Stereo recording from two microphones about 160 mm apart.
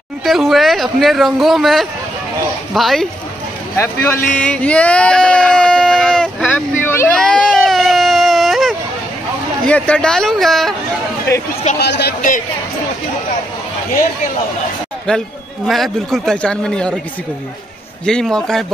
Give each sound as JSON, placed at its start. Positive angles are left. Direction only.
{"t": 0.2, "sound": "a man's voice", "side_deg": 0}
{"t": 3.7, "sound": "speech", "side_deg": 15}
{"t": 7.2, "sound": "whimper", "side_deg": 5}
{"t": 9.7, "sound": "a man's voice", "side_deg": 5}
{"t": 11.8, "sound": "a man's voice", "side_deg": 90}
{"t": 15.0, "sound": "a man's voice", "side_deg": 0}
{"t": 18.0, "sound": "a man's voice", "side_deg": 5}